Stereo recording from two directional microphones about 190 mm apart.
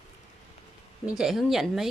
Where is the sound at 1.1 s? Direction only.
5° right (ahead or behind).